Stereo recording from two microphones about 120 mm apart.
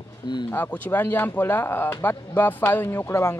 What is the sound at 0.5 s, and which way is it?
Speech, 15° left (ahead or behind).